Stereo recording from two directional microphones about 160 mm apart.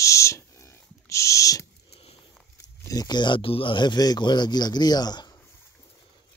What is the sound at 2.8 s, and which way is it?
Speech, 25° left (ahead or behind).